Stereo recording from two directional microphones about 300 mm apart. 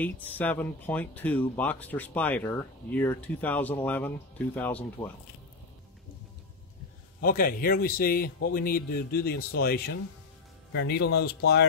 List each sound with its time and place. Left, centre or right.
0.0 s speech: centre
7.2 s speech: left